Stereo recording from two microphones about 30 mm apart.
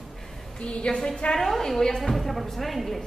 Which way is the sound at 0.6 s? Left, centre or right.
Left.